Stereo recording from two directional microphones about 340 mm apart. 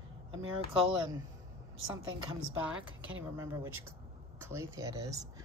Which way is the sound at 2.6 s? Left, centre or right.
Centre.